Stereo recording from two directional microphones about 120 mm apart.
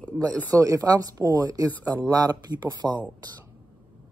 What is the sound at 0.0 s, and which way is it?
Speech, 15° left (ahead or behind).